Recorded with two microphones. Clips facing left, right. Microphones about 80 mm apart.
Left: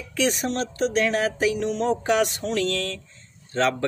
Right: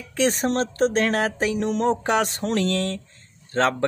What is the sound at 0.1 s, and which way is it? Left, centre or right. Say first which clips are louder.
Speech: right 3 dB; right.